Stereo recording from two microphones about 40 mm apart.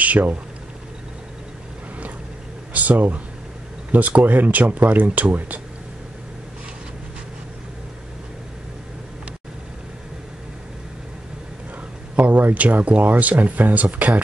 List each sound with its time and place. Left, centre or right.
0.0 s speech: right
2.7 s a sound: right
3.9 s speech: right
12.2 s speech: right